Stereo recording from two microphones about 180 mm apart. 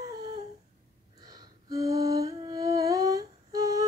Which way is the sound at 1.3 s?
20° right (ahead or behind).